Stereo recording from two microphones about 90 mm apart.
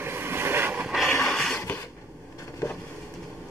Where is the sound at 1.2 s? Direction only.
5° left (ahead or behind).